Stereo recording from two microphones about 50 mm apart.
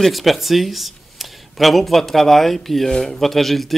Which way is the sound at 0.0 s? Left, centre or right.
Centre.